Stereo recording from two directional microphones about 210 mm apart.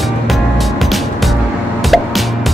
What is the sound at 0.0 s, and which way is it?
Music, centre (ahead or behind).